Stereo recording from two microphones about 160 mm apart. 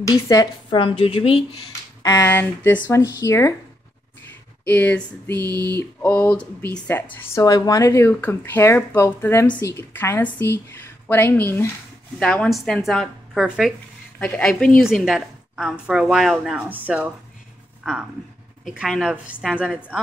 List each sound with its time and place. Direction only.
0.0 s a woman's voice: 20° left (ahead or behind)
2.0 s speech: 15° left (ahead or behind)
4.6 s speech: 10° left (ahead or behind)
7.4 s a woman's voice: 25° left (ahead or behind); by 20.0 s 5° right (ahead or behind)